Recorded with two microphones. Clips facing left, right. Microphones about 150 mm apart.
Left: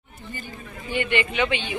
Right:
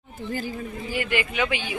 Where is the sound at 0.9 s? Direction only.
5° right (ahead or behind).